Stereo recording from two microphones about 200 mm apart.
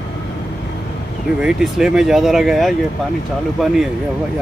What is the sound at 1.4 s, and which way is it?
Speech, 5° right (ahead or behind).